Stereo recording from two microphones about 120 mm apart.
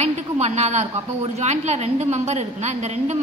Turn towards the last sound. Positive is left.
turn(degrees=-70)  # may be behind; listen again after turning